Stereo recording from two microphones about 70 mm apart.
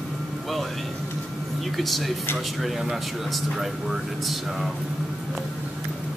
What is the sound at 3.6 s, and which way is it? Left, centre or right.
Speech, centre.